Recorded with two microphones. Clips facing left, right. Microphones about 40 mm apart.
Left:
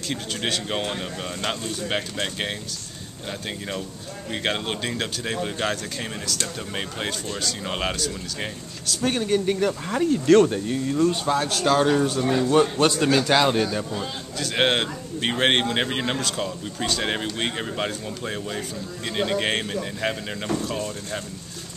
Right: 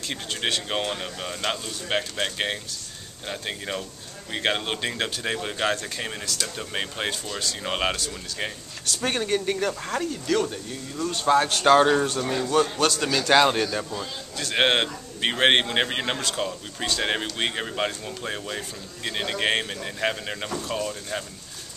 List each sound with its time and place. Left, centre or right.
0.1 s speech: centre
10.4 s speech: left
11.2 s speech: centre
12.2 s a man's voice: centre
12.4 s a man's voice: centre
13.3 s speech: centre